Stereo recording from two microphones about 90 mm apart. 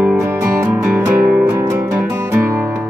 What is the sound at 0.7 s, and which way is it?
Music, 20° right (ahead or behind).